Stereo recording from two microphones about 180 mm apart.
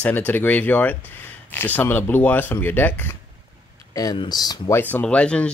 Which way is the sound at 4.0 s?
20° left (ahead or behind).